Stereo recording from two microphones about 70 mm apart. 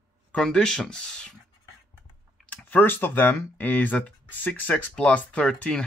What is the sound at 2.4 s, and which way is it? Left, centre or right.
Speech, left.